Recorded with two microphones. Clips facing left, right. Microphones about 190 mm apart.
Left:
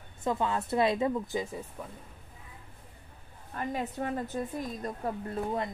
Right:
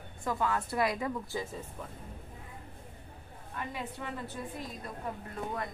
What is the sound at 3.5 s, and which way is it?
Speech, 45° left (ahead or behind).